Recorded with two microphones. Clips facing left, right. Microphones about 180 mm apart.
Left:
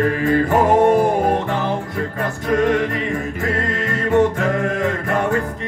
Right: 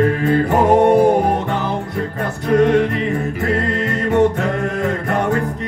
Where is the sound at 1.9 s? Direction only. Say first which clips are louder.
Right 1 dB; 40° right (ahead or behind).